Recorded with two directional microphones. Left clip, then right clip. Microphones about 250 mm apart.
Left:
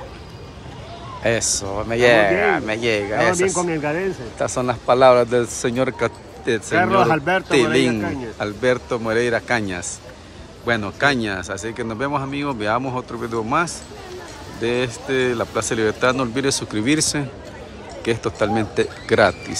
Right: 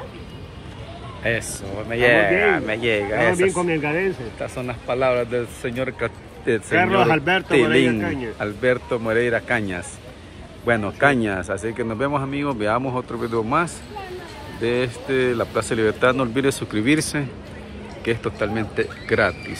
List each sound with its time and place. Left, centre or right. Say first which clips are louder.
1.8 s speech: left 2 dB; centre
4.4 s speech: left 7 dB; left
9.6 s speech: left 1 dB; left
10.7 s speech: right 1 dB; centre